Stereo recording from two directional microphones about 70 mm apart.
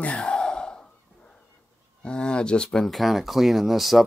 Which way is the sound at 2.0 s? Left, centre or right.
Centre.